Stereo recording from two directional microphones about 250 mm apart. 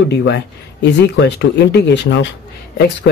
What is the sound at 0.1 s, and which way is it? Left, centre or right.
Speech, left.